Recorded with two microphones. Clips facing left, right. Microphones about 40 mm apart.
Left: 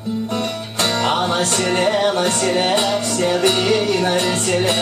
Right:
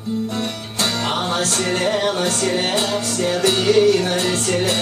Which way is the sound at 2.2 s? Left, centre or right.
Left.